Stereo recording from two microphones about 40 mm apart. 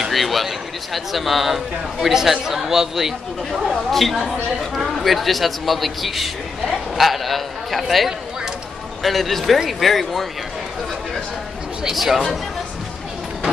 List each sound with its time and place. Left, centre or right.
0.1 s a man's voice: centre
3.6 s a man's voice: centre
11.9 s a man's voice: centre